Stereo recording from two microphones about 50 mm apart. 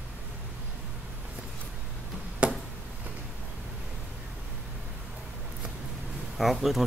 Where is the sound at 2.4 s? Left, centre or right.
Right.